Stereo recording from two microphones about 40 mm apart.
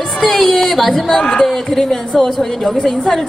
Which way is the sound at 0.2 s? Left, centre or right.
Centre.